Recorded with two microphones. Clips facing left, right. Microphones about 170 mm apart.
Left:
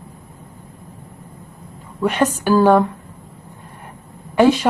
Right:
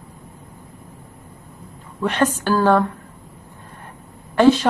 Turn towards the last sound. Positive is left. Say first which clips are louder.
# even
turn(degrees=10)  # may be behind; listen again after turning